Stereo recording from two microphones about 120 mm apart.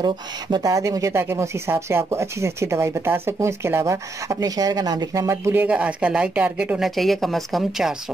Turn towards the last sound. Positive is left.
turn(degrees=0)  # may be behind; listen again after turning